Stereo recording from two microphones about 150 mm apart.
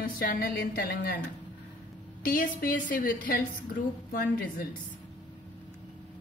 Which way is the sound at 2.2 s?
70° left (ahead or behind).